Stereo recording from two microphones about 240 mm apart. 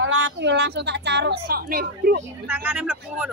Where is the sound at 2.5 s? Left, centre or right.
Centre.